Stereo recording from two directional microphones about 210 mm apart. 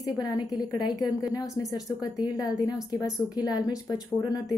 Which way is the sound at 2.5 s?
Centre (ahead or behind).